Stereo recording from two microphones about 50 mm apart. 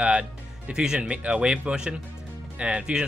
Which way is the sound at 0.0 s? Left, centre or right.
Right.